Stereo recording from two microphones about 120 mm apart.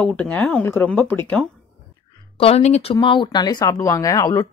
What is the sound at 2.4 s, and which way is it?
Speech, 60° left (ahead or behind).